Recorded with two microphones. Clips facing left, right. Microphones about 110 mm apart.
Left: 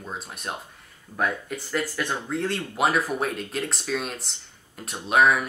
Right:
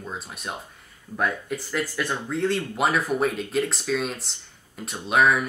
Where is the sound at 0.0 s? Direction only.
Centre (ahead or behind).